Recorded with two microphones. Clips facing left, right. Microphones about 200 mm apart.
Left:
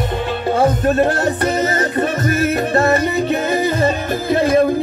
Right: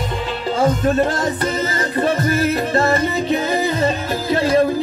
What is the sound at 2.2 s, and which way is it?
Music, 30° right (ahead or behind).